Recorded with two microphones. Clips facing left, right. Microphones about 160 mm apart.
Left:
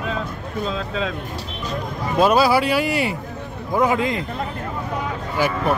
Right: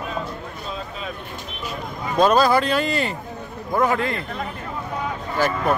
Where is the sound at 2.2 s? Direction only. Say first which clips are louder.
Even; 10° left (ahead or behind).